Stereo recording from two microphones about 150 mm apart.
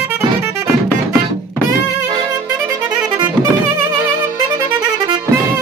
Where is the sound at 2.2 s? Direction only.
15° right (ahead or behind).